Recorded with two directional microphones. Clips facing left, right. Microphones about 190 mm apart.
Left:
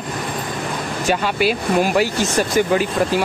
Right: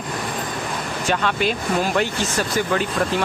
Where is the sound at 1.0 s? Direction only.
10° left (ahead or behind).